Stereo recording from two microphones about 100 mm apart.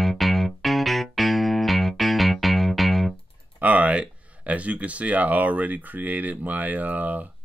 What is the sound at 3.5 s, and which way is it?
Speech, 15° right (ahead or behind).